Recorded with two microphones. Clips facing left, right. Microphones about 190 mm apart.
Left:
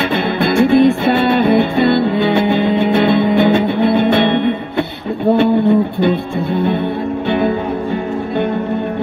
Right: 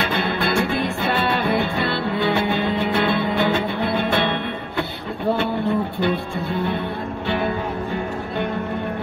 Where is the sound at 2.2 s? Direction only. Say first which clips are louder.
Left 7 dB; 20° left (ahead or behind).